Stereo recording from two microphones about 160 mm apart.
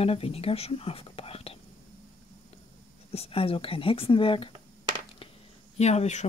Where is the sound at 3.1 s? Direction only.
35° left (ahead or behind).